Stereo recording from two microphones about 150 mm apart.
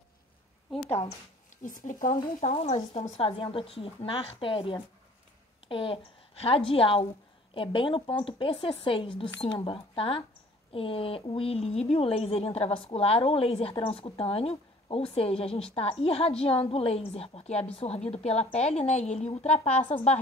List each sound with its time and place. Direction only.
0.8 s speech: 15° left (ahead or behind)
1.6 s speech: 60° left (ahead or behind)
2.5 s a woman's voice: 45° left (ahead or behind)